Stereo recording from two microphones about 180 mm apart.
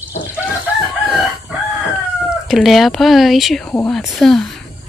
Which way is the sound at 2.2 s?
Centre (ahead or behind).